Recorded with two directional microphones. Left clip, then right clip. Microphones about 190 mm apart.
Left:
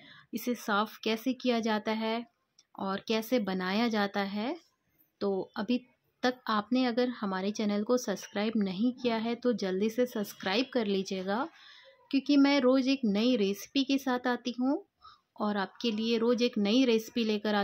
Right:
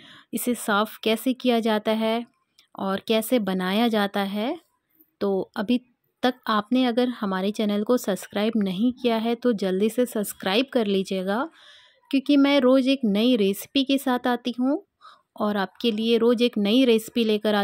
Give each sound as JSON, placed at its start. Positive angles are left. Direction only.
{"t": 0.0, "sound": "speech", "side_deg": -40}